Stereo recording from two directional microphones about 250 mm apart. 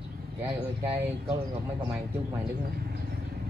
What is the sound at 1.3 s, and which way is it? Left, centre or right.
Speech, centre.